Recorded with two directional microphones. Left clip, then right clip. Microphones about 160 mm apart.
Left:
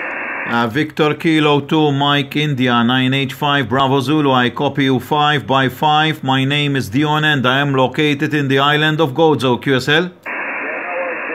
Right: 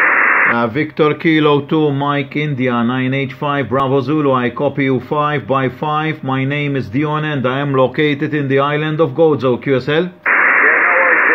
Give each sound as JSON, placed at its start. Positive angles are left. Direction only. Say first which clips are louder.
{"t": 0.0, "sound": "radio", "louder": "right 12 dB", "side_deg": -40}
{"t": 0.5, "sound": "speech", "louder": "right 2 dB", "side_deg": 15}
{"t": 1.7, "sound": "speech", "louder": "left 1 dB", "side_deg": 20}
{"t": 10.2, "sound": "radio", "louder": "right 12 dB", "side_deg": -35}